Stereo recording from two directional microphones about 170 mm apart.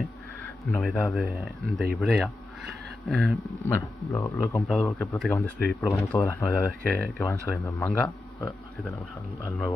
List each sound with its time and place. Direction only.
0.7 s speech: centre (ahead or behind)
3.7 s speech: 15° left (ahead or behind)
4.6 s speech: 5° left (ahead or behind)